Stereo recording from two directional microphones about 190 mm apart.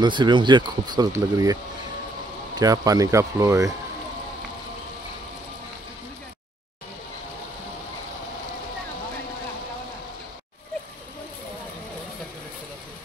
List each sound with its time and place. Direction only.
0.0 s speech: 25° right (ahead or behind)
2.6 s speech: 20° right (ahead or behind)